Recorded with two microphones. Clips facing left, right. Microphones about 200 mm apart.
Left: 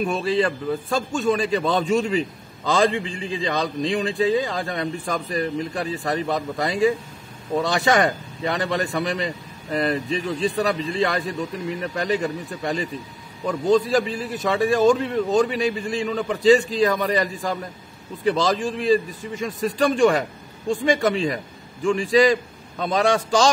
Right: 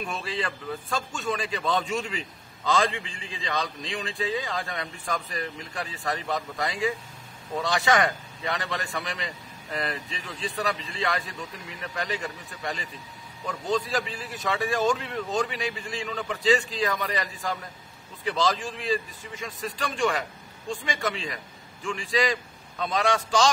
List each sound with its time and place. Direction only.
0.0 s a man's voice: 40° left (ahead or behind)